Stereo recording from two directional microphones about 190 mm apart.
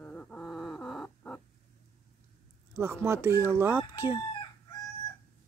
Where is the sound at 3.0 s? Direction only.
15° right (ahead or behind).